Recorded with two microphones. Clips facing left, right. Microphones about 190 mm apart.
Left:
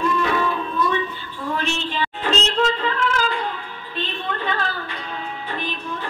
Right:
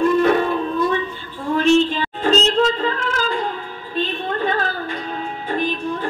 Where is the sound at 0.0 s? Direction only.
50° right (ahead or behind).